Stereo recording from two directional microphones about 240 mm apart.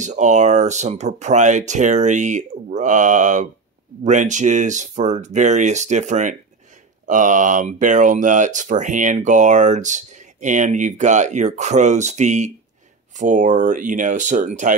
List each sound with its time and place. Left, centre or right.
0.0 s speech: right